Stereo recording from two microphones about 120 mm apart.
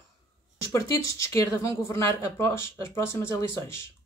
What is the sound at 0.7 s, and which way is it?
Speech, 25° left (ahead or behind).